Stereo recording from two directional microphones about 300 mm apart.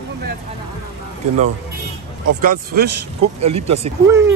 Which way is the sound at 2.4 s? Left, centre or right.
Right.